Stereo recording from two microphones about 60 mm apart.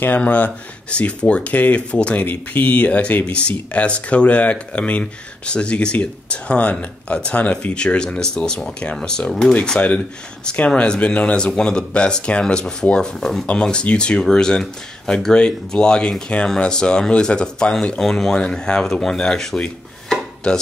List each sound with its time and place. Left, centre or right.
0.0 s speech: left; by 20.6 s centre